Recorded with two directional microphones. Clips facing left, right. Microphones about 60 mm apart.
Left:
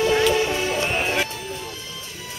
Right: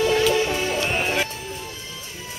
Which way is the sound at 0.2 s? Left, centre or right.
Centre.